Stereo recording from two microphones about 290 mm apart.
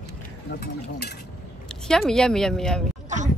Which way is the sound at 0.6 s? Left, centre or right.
Left.